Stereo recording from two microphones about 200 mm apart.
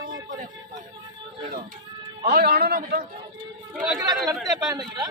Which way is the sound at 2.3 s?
50° right (ahead or behind).